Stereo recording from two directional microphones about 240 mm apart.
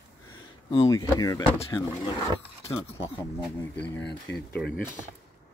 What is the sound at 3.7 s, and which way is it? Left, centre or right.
Speech, left.